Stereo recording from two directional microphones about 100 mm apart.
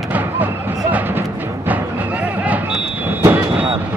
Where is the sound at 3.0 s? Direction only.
20° right (ahead or behind).